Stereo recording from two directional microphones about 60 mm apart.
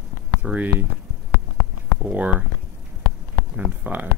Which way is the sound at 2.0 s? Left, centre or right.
Right.